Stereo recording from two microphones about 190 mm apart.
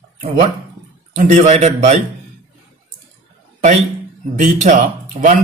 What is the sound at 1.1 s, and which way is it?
Speech, 40° right (ahead or behind).